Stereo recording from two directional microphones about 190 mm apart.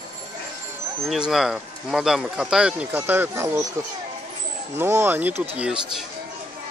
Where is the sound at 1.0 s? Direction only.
5° right (ahead or behind).